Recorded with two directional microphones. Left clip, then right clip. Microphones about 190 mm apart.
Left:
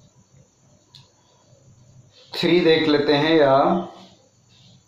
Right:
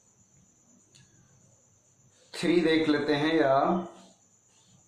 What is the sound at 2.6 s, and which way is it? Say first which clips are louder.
Speech: left 8 dB; 15° left (ahead or behind).